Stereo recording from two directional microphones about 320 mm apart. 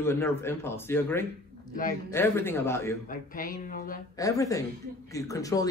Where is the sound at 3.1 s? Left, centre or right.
Left.